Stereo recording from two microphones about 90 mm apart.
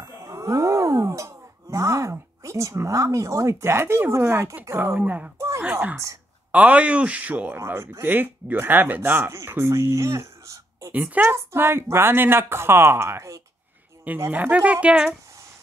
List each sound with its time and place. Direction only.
0.0 s a sound: 35° right (ahead or behind)
4.6 s speech: 30° right (ahead or behind)
4.9 s speech: 15° right (ahead or behind)
7.5 s speech: 30° right (ahead or behind)
10.9 s speech: 20° right (ahead or behind)
14.0 s speech: 20° right (ahead or behind)